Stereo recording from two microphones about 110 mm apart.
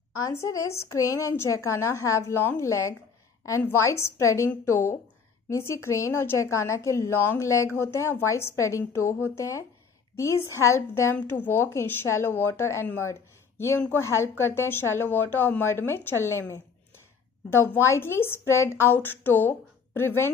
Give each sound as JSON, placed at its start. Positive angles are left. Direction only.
{"t": 0.1, "sound": "a woman's voice", "side_deg": 30}
{"t": 13.7, "sound": "speech", "side_deg": 15}
{"t": 14.0, "sound": "a woman's voice", "side_deg": 25}